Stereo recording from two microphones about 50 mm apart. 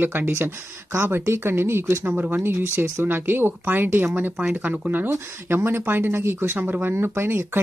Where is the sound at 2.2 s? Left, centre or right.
Right.